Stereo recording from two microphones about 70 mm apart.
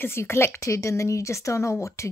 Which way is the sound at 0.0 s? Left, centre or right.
Left.